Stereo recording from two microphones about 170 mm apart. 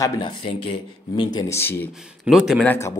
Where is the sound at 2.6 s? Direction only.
10° left (ahead or behind).